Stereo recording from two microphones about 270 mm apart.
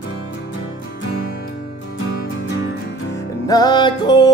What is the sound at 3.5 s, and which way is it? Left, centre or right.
Music, centre.